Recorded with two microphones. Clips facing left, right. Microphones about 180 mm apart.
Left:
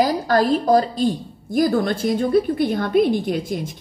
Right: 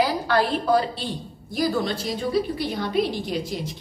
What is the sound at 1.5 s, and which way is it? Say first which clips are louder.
A woman's voice: left 5 dB; 50° left (ahead or behind).